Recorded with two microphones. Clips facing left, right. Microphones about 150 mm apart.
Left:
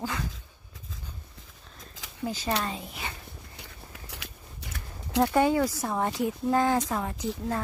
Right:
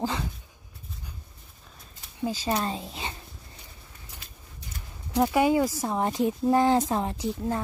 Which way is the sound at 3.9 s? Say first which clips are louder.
Left 5 dB; 75° left (ahead or behind).